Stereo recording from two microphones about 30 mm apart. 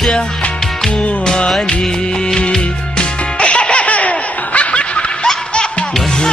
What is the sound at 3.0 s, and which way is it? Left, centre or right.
Music, left.